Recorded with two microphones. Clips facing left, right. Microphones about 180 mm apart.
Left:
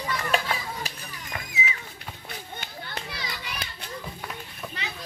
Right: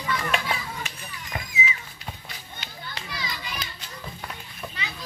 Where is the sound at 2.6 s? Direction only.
55° left (ahead or behind).